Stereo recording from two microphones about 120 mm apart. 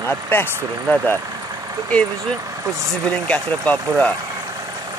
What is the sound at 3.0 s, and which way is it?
Speech, 10° left (ahead or behind).